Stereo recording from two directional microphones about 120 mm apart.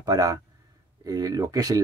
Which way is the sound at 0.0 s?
30° right (ahead or behind).